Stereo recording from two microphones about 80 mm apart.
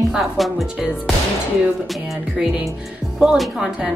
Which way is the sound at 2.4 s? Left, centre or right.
Centre.